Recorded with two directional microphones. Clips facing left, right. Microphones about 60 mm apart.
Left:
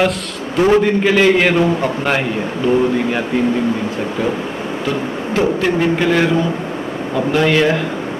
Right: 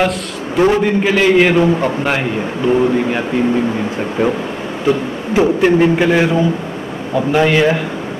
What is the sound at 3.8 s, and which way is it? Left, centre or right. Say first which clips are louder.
Speech: right 3 dB; centre.